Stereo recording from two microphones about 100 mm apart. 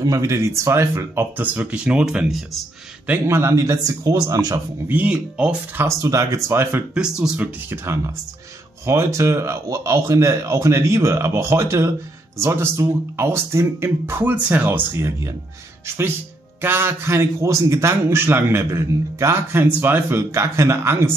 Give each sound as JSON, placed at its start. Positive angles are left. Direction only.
{"t": 0.0, "sound": "a man's voice", "side_deg": -35}
{"t": 3.3, "sound": "speech", "side_deg": -25}
{"t": 4.8, "sound": "speech", "side_deg": -15}
{"t": 5.8, "sound": "a man's voice", "side_deg": -30}
{"t": 6.9, "sound": "speech", "side_deg": -5}
{"t": 7.7, "sound": "a man's voice", "side_deg": -25}
{"t": 16.6, "sound": "a man's voice", "side_deg": -25}